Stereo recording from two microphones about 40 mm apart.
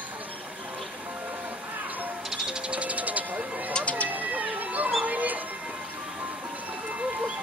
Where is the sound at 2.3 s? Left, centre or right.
Centre.